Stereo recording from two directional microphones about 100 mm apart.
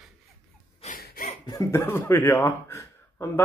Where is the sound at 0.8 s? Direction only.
90° left.